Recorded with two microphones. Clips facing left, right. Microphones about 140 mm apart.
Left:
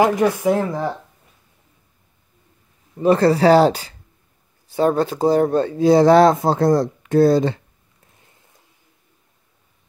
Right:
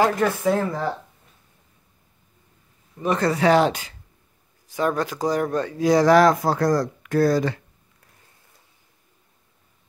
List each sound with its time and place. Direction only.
0.0 s speech: 15° left (ahead or behind)
3.0 s speech: 30° left (ahead or behind)